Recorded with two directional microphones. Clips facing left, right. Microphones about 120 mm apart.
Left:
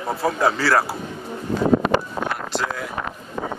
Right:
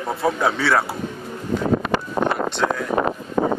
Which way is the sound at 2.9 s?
40° right (ahead or behind).